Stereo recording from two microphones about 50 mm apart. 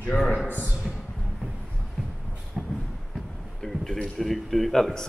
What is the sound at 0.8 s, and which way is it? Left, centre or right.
Music, centre.